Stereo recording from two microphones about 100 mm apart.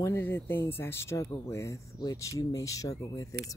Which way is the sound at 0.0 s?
25° left (ahead or behind).